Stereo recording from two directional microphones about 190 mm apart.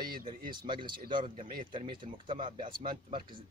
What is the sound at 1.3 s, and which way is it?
Speech, 45° right (ahead or behind).